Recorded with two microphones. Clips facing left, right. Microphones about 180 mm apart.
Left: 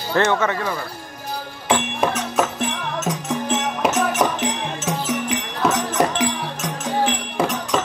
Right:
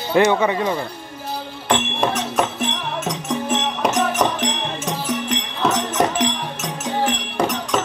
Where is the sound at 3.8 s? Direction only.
5° left (ahead or behind).